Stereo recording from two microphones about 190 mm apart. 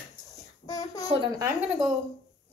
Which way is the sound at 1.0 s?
20° right (ahead or behind).